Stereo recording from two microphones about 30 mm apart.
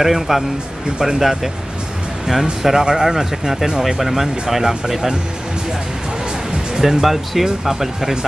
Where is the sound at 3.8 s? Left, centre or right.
Centre.